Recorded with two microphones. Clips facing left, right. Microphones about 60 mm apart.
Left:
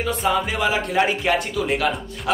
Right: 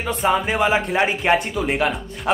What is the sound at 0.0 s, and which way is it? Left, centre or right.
Speech, right.